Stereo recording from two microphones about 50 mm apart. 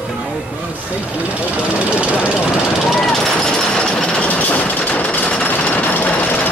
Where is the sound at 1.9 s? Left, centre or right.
Right.